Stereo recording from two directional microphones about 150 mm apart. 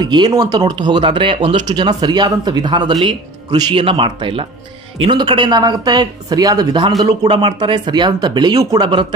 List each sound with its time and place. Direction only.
0.0 s speech: 30° right (ahead or behind)